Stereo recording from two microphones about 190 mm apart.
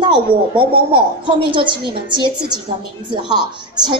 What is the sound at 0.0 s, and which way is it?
A child's voice, 25° right (ahead or behind).